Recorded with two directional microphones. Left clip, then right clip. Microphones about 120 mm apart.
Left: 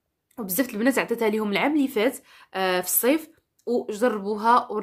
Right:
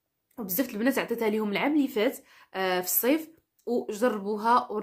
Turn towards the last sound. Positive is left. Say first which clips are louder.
# left 4 dB
turn(degrees=35)  # may be behind; listen again after turning